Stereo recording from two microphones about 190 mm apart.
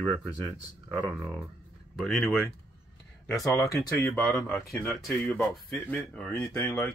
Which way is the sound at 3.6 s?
20° left (ahead or behind).